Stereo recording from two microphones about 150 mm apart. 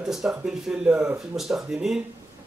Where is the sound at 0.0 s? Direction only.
5° right (ahead or behind).